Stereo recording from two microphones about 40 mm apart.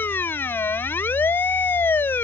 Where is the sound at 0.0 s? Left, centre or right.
Left.